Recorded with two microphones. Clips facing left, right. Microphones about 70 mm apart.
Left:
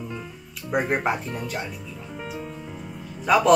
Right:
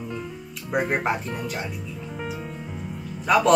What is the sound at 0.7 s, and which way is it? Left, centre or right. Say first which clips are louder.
Speech: even; centre.